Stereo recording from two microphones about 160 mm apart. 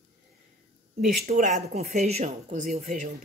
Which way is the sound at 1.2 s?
55° right (ahead or behind).